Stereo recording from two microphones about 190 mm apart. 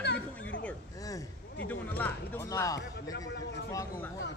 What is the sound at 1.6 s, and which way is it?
A man's voice, 10° left (ahead or behind).